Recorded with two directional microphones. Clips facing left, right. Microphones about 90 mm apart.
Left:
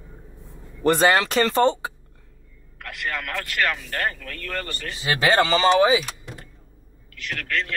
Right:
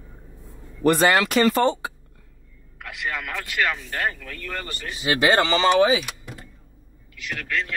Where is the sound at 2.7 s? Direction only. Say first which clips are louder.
Even; 5° right (ahead or behind).